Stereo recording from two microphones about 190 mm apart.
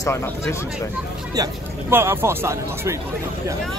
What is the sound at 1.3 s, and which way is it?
Speech, 15° right (ahead or behind).